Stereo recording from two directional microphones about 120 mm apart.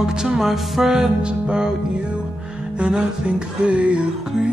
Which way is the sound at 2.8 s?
5° right (ahead or behind).